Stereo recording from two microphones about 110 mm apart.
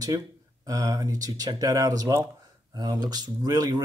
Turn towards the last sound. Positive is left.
turn(degrees=-35)  # may be behind; listen again after turning